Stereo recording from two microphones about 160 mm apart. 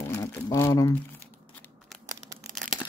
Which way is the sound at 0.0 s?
20° left (ahead or behind).